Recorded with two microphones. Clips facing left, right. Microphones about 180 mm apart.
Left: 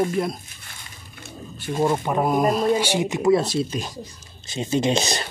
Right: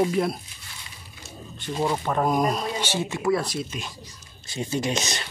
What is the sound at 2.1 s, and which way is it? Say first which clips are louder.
Speech: left 3 dB; 10° left (ahead or behind).